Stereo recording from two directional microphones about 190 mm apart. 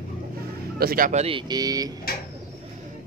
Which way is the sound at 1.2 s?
25° right (ahead or behind).